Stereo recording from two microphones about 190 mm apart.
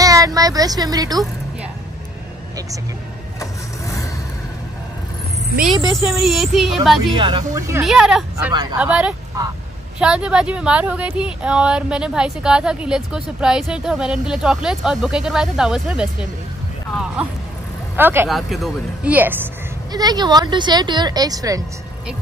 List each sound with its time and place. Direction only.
0.0 s speech: 20° right (ahead or behind)
3.3 s vehicle: 15° left (ahead or behind)
6.0 s speech: centre (ahead or behind)
7.2 s speech: 25° right (ahead or behind)
7.8 s speech: centre (ahead or behind)
17.9 s speech: 10° right (ahead or behind)
18.3 s speech: centre (ahead or behind); by 21.6 s 20° right (ahead or behind)